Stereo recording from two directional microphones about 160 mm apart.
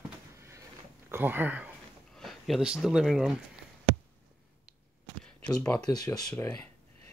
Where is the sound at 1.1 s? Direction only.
10° right (ahead or behind).